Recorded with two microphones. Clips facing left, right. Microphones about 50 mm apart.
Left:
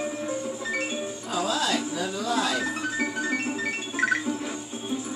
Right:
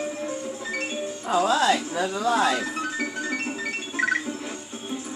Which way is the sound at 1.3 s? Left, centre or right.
Right.